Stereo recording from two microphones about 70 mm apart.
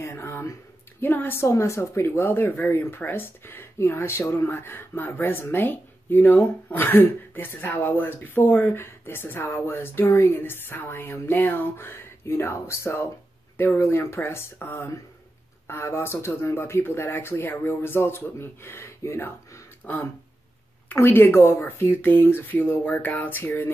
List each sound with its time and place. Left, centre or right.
0.0 s a sound: left
1.0 s a woman's voice: left
19.8 s a woman's voice: left
20.9 s speech: left